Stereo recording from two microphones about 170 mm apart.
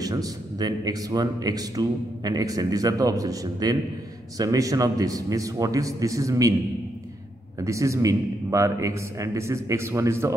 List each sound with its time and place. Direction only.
0.0 s speech: 20° right (ahead or behind)
7.6 s a man's voice: 20° right (ahead or behind)